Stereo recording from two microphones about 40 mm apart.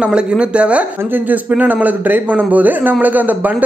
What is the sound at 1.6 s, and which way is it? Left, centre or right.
Speech, right.